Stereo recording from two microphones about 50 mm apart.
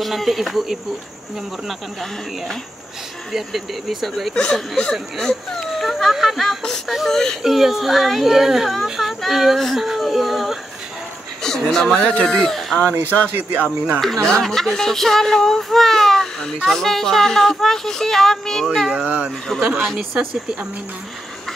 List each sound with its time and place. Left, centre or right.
0.0 s speech: centre
4.3 s speech: centre
5.2 s a sound: centre
6.1 s speech: centre
7.4 s speech: centre
11.4 s speech: centre
12.4 s speech: centre
13.4 s speech: right
13.9 s speech: centre
18.9 s speech: right